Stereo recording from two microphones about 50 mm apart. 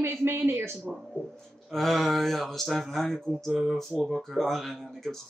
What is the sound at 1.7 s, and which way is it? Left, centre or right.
Speech, centre.